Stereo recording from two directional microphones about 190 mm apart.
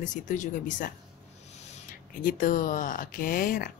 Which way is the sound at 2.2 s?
45° left (ahead or behind).